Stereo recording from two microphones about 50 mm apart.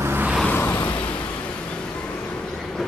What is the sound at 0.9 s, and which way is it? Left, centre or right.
Vehicle, left.